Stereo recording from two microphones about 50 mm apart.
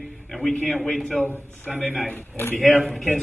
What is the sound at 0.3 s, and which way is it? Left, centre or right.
A man's voice, centre.